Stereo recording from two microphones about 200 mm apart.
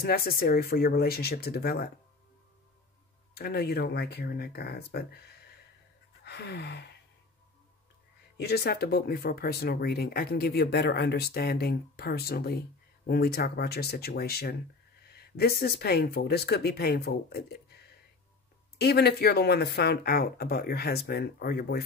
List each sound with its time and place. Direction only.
0.0 s speech: 50° left (ahead or behind)
3.3 s speech: 50° left (ahead or behind)
6.2 s gasp: 55° left (ahead or behind)
8.4 s speech: 55° left (ahead or behind)
18.8 s speech: 55° left (ahead or behind)